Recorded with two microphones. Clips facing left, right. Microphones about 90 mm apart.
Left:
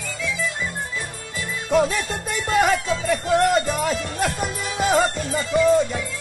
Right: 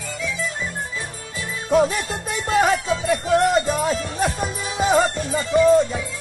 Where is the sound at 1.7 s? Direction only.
5° right (ahead or behind).